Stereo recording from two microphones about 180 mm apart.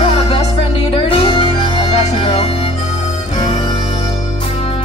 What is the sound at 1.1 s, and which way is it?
Music, 30° left (ahead or behind).